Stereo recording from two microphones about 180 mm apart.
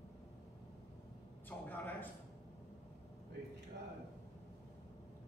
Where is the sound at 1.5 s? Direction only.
10° left (ahead or behind).